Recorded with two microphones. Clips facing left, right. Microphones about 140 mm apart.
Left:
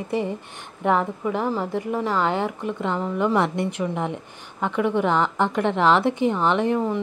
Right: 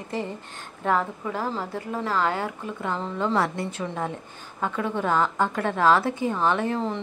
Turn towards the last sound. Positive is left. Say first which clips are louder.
# left 4 dB
turn(degrees=10)  # may be behind; listen again after turning